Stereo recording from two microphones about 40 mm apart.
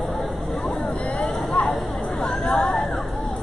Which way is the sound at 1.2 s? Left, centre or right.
Left.